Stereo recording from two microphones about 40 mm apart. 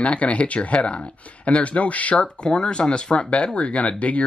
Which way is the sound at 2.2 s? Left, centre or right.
Centre.